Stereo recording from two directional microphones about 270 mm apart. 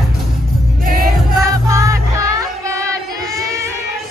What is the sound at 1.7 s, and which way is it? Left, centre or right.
Music, centre.